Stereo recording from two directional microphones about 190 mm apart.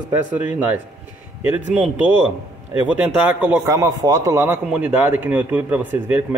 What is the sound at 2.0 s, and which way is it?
Speech, 25° left (ahead or behind).